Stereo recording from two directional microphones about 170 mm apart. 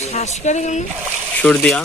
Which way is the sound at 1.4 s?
5° left (ahead or behind).